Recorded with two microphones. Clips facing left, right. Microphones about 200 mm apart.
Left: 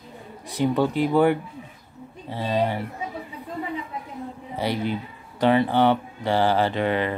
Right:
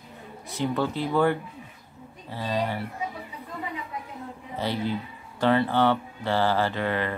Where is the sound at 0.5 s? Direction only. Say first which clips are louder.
Left 5 dB; 15° left (ahead or behind).